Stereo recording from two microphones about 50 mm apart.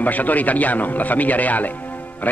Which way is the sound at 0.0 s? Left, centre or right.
Left.